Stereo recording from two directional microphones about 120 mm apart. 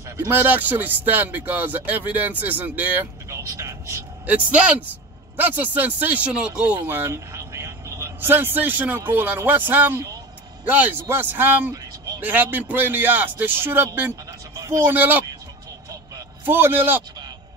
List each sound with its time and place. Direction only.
0.2 s speech: 15° right (ahead or behind)
4.3 s speech: 10° right (ahead or behind)
6.8 s speech: 20° right (ahead or behind)
13.9 s a sound: 15° right (ahead or behind)
14.6 s speech: 25° right (ahead or behind)
16.4 s speech: 20° right (ahead or behind)